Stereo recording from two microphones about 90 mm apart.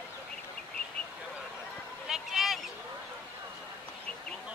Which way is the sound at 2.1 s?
Centre (ahead or behind).